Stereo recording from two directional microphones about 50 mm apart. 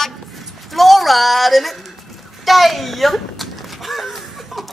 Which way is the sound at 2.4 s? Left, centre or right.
Centre.